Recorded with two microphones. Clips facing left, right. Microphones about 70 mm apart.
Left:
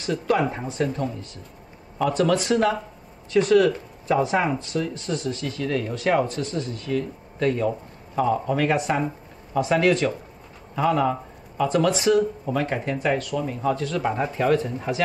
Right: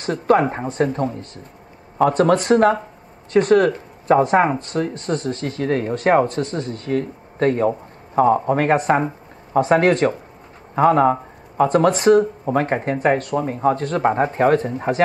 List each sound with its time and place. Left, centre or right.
0.0 s speech: right